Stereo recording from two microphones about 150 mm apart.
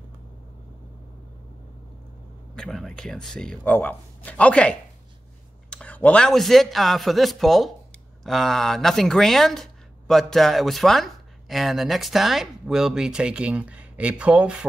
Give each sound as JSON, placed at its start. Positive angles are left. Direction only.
{"t": 2.5, "sound": "speech", "side_deg": 5}